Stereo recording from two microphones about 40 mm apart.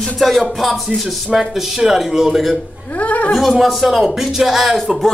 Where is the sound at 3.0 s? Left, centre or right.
Left.